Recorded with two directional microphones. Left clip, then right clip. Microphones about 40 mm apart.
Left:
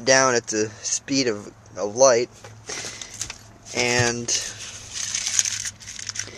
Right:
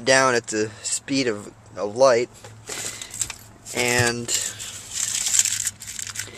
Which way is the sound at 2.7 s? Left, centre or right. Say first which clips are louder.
Right 1 dB; centre.